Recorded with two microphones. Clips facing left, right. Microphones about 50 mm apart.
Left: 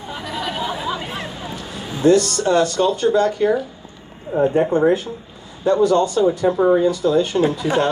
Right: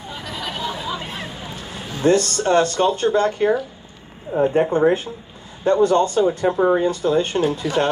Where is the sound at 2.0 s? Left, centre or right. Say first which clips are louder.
Left 2 dB; right.